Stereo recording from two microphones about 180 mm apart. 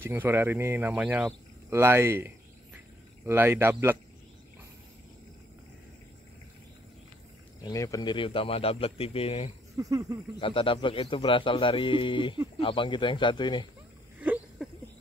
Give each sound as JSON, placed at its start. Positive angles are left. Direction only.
{"t": 0.0, "sound": "speech", "side_deg": -10}
{"t": 1.7, "sound": "a sound", "side_deg": -15}
{"t": 3.3, "sound": "speech", "side_deg": -15}
{"t": 7.6, "sound": "speech", "side_deg": 20}
{"t": 9.8, "sound": "speech", "side_deg": -20}
{"t": 10.4, "sound": "a man's voice", "side_deg": 30}
{"t": 14.2, "sound": "a sound", "side_deg": -10}